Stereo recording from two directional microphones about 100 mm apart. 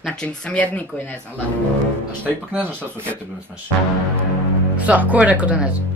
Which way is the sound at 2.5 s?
20° right (ahead or behind).